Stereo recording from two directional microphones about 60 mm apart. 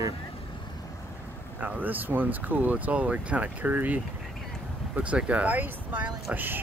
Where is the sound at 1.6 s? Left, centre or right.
Right.